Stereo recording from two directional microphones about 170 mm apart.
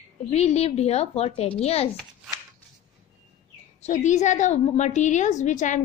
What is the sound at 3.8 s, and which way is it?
A woman's voice, 45° left (ahead or behind).